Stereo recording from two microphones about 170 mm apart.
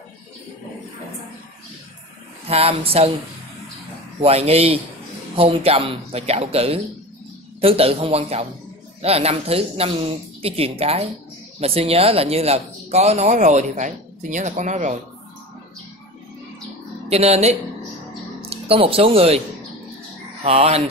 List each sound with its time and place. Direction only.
2.4 s speech: 35° right (ahead or behind)
4.2 s speech: 35° right (ahead or behind)
17.1 s speech: 40° right (ahead or behind)
20.4 s speech: 35° right (ahead or behind)